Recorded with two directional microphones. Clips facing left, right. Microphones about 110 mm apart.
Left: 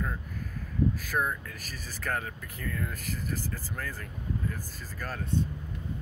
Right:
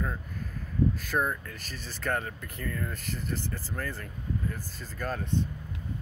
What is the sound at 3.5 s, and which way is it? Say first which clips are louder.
Throat clearing: right 2 dB; 10° right (ahead or behind).